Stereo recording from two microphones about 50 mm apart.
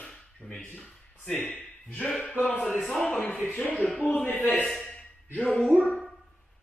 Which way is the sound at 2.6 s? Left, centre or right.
Centre.